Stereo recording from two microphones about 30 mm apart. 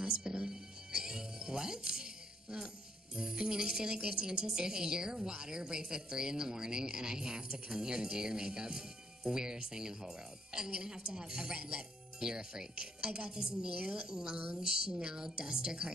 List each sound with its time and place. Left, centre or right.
0.0 s music: right
3.2 s speech: right